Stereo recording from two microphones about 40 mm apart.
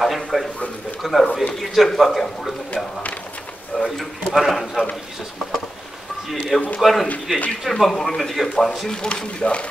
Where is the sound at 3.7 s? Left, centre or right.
Centre.